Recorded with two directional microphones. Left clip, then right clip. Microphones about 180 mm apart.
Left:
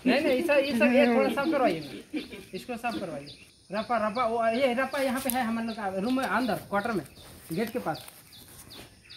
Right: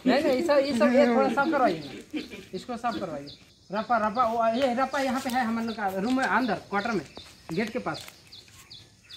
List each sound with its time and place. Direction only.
0.0 s speech: 25° left (ahead or behind)
1.3 s speech: 40° left (ahead or behind)
2.6 s speech: 20° left (ahead or behind)
3.7 s speech: 35° left (ahead or behind); by 7.9 s 65° left (ahead or behind)